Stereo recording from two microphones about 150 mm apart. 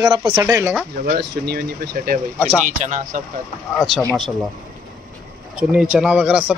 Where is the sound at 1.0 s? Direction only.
80° right.